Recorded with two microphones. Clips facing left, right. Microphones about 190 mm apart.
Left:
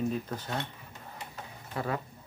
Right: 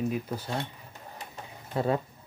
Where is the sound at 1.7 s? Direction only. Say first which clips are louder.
Right 6 dB; 25° right (ahead or behind).